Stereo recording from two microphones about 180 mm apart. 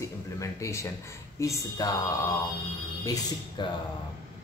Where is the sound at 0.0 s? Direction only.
15° left (ahead or behind).